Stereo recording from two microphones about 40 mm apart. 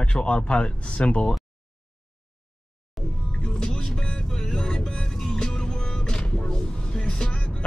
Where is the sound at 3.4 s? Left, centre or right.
Left.